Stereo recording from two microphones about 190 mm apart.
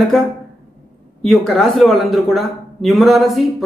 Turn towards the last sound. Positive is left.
turn(degrees=0)  # may be behind; listen again after turning